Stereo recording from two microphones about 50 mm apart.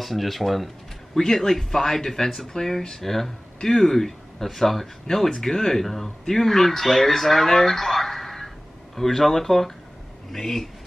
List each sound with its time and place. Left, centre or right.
0.0 s speech: centre